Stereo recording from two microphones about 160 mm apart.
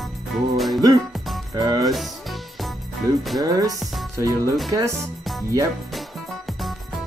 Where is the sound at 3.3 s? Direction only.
20° right (ahead or behind).